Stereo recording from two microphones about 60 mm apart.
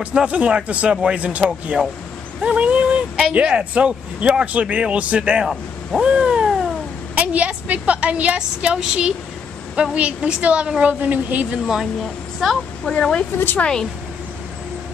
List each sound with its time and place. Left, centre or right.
0.0 s speech: centre
5.4 s speech: centre
6.0 s cat: centre
7.2 s speech: right
11.5 s speech: centre
12.8 s speech: centre